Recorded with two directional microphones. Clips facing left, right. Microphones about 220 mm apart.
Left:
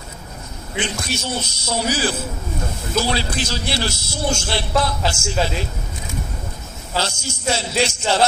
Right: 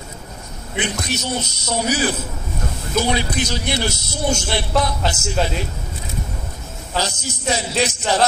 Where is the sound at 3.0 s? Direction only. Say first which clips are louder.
Right 2 dB; 20° right (ahead or behind).